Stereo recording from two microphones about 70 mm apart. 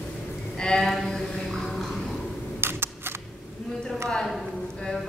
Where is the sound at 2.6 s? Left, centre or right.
Right.